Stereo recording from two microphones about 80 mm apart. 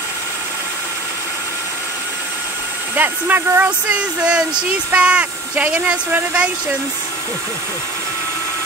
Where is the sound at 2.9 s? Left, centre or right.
Right.